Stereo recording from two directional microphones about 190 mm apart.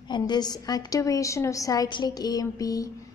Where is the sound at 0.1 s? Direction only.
20° left (ahead or behind).